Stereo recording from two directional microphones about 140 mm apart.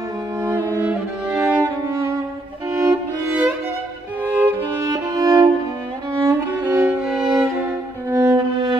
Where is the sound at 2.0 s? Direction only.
25° right (ahead or behind).